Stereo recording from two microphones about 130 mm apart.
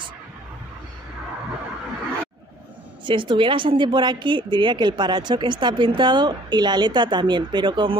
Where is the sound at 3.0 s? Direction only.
40° right (ahead or behind).